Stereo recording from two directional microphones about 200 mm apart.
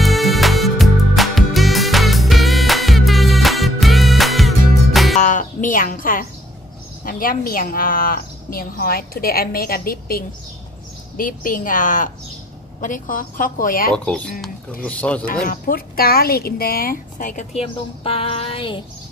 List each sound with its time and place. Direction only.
0.0 s music: centre (ahead or behind)
5.2 s a sound: 40° left (ahead or behind)
7.1 s a woman's voice: 45° left (ahead or behind)
13.9 s speech: 5° left (ahead or behind)
15.4 s a woman's voice: 45° left (ahead or behind); by 18.8 s 25° left (ahead or behind)